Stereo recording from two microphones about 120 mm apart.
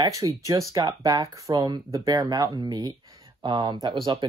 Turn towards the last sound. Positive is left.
turn(degrees=-40)  # may be behind; listen again after turning